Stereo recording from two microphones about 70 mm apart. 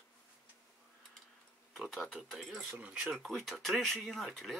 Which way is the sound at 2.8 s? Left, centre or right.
Centre.